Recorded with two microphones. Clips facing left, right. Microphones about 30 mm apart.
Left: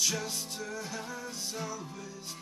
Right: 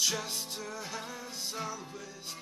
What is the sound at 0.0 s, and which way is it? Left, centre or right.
Music, centre.